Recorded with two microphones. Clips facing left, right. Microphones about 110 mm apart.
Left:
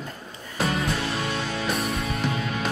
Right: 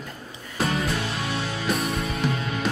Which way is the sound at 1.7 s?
Centre (ahead or behind).